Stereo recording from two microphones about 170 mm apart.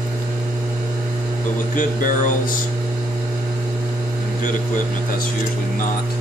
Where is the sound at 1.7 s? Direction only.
50° left (ahead or behind).